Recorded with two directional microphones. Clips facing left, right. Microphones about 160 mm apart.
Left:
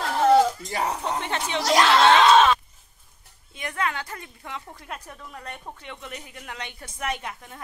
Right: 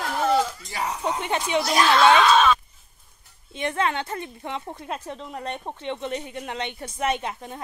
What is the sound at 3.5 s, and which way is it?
A woman's voice, 25° right (ahead or behind).